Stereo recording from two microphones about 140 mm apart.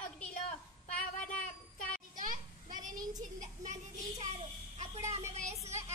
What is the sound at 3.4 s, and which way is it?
A child's voice, 60° right (ahead or behind).